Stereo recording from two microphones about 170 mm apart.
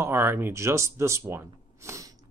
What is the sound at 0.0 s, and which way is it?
Speech, 15° right (ahead or behind).